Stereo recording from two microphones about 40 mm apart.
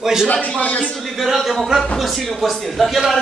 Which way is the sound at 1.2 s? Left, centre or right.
Centre.